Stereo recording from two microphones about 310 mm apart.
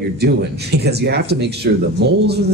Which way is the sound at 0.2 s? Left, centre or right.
Right.